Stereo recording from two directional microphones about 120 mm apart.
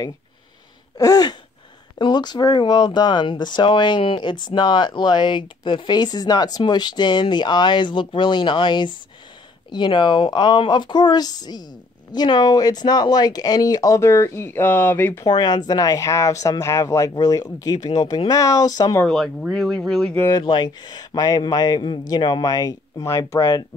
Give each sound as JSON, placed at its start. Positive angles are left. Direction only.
{"t": 0.9, "sound": "speech", "side_deg": 30}
{"t": 15.2, "sound": "speech", "side_deg": 35}
{"t": 19.0, "sound": "speech", "side_deg": 5}
{"t": 20.4, "sound": "speech", "side_deg": 40}